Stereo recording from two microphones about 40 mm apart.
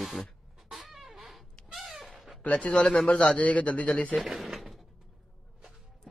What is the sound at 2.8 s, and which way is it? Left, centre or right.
Speech, centre.